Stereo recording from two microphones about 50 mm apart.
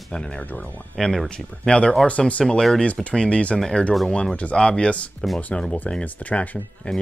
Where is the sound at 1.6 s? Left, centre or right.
Centre.